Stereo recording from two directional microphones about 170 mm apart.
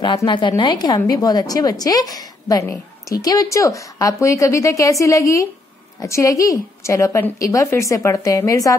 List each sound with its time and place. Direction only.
0.0 s a woman's voice: 25° left (ahead or behind)